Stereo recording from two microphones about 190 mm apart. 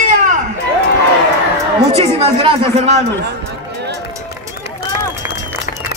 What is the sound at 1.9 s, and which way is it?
Speech, 30° right (ahead or behind).